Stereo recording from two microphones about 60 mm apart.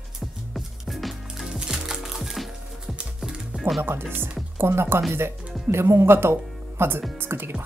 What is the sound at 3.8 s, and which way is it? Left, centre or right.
Speech, right.